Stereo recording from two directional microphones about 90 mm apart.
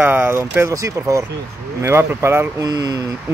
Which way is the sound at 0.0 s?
25° right (ahead or behind).